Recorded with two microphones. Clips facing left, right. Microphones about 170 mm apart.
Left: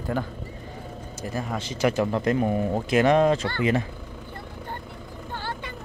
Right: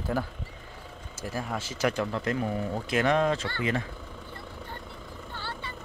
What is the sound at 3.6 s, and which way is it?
Vehicle, 15° left (ahead or behind).